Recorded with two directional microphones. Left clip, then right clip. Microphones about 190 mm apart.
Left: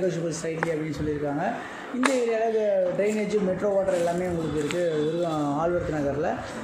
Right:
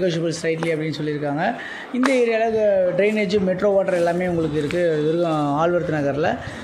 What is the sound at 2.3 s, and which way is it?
Speech, 40° right (ahead or behind).